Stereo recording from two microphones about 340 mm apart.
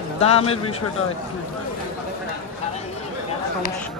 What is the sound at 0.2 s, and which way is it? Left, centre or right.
Speech, centre.